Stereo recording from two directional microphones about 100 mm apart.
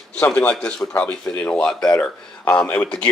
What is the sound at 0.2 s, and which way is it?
A man's voice, 10° left (ahead or behind).